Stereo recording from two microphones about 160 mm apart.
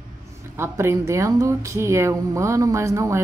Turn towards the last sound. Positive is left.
turn(degrees=-20)  # may be behind; listen again after turning